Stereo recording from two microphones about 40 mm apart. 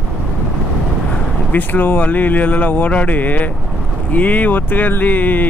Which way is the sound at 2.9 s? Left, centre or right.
Left.